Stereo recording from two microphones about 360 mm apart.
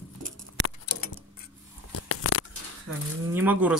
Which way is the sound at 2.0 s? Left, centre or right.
Left.